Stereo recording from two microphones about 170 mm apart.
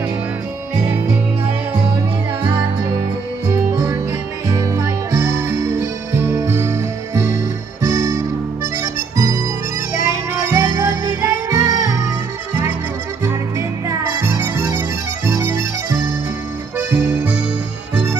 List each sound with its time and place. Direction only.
4.5 s music: 20° right (ahead or behind)
9.1 s harmonica: 20° right (ahead or behind)
9.9 s music: 20° right (ahead or behind)
13.2 s music: 15° right (ahead or behind)
16.7 s music: 10° right (ahead or behind)